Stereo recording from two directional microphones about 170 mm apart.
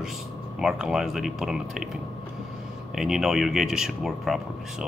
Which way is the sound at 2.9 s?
Centre (ahead or behind).